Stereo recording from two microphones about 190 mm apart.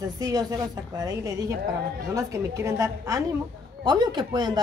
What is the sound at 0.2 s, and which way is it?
A woman's voice, 20° right (ahead or behind).